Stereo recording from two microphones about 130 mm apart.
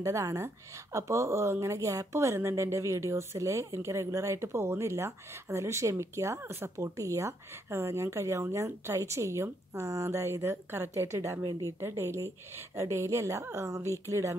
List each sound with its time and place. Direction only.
0.0 s speech: 25° right (ahead or behind)